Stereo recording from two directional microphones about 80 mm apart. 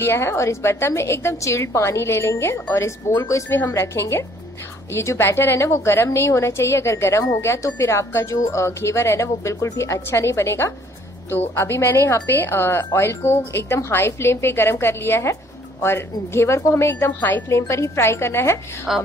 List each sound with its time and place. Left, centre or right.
0.0 s a woman's voice: left
18.9 s a woman's voice: centre